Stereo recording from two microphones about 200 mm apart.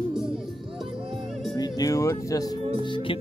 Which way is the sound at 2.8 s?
25° left (ahead or behind).